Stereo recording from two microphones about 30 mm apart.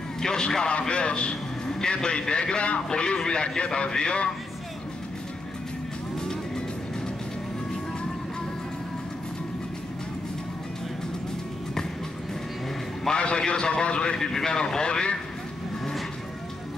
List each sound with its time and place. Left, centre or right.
0.2 s a man's voice: left
0.7 s a man's voice: left
6.1 s vehicle: left
13.1 s a sound: left
13.5 s a man's voice: left
14.1 s a man's voice: centre
14.8 s a man's voice: left